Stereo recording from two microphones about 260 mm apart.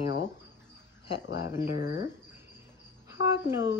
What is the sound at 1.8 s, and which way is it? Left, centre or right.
Speech, left.